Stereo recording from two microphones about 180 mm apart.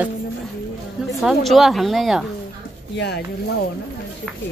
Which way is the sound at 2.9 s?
65° left (ahead or behind).